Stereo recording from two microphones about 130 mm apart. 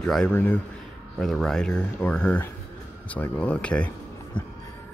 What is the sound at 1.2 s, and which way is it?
Speech, 5° left (ahead or behind).